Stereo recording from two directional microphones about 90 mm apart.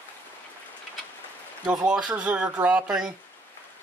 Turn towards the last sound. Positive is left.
turn(degrees=-10)  # may be behind; listen again after turning